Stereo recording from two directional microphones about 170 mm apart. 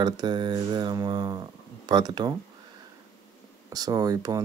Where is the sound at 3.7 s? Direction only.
20° right (ahead or behind).